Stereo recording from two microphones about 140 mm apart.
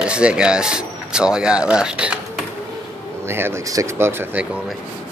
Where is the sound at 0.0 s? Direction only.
5° right (ahead or behind).